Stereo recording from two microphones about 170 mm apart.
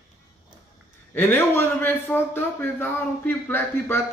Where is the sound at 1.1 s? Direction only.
10° left (ahead or behind).